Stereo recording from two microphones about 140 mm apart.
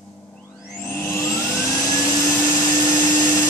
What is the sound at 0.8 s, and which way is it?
Vacuum cleaner, 15° left (ahead or behind).